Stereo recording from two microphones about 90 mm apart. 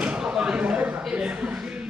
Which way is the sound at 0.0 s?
10° right (ahead or behind).